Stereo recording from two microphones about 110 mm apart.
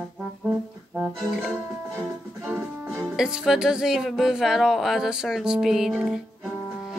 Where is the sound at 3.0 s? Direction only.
5° right (ahead or behind).